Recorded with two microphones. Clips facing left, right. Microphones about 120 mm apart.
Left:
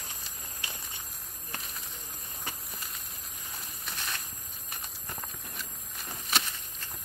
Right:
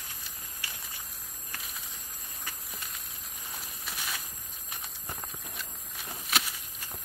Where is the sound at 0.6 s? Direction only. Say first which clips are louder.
Left 2 dB; 20° left (ahead or behind).